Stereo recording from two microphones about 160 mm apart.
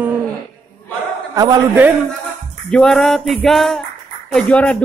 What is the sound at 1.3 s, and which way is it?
Speech, 25° right (ahead or behind).